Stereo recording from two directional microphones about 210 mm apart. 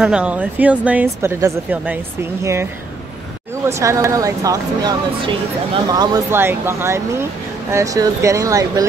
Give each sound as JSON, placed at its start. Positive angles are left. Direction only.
{"t": 0.0, "sound": "speech", "side_deg": -5}